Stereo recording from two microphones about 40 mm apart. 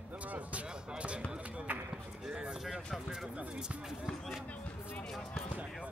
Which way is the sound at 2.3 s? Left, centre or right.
Right.